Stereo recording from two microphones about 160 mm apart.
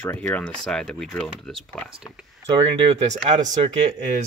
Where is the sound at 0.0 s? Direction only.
10° left (ahead or behind).